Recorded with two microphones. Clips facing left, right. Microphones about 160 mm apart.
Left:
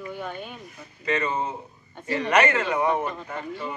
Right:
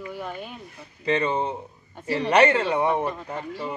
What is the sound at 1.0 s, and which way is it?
Speech, 30° right (ahead or behind).